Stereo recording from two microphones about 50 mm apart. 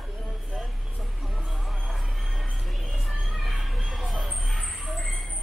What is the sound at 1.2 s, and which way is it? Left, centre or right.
Music, centre.